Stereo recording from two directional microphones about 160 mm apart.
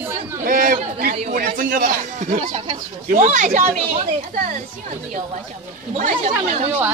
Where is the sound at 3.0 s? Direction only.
50° right (ahead or behind).